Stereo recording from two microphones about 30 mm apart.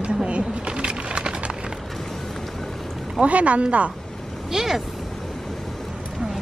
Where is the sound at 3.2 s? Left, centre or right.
Right.